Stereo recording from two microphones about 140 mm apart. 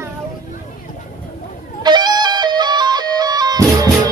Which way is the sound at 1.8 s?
30° right (ahead or behind).